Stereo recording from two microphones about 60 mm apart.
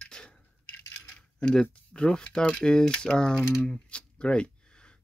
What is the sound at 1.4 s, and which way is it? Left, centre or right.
Speech, centre.